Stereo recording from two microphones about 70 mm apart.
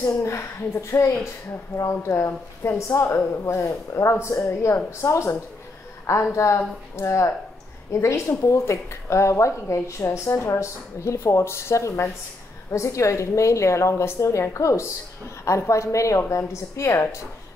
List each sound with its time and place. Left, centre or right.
0.0 s a woman's voice: left